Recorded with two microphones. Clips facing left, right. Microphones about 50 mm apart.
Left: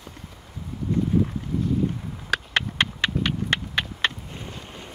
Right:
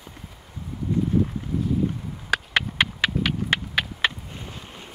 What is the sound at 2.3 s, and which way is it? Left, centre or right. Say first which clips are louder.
Clip-clop: right 1 dB; centre.